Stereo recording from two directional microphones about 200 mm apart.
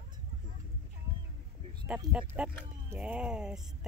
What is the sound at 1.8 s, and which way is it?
Speech, 5° right (ahead or behind).